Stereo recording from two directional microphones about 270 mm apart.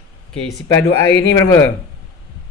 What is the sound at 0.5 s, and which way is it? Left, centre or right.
Speech, left.